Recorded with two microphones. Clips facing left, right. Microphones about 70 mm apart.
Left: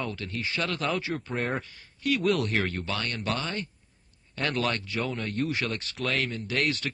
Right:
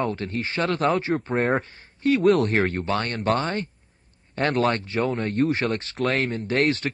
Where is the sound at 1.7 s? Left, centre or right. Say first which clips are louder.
Right 7 dB; right.